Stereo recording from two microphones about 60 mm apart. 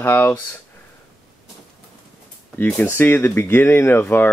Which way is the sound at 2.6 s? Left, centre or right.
Left.